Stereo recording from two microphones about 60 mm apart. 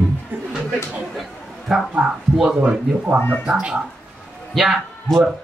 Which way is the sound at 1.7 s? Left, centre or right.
Centre.